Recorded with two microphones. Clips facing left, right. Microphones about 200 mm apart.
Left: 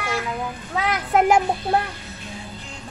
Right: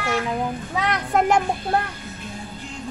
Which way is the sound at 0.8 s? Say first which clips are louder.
Left 2 dB; 5° left (ahead or behind).